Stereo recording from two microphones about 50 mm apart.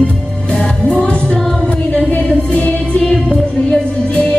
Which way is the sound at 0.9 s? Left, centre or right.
Centre.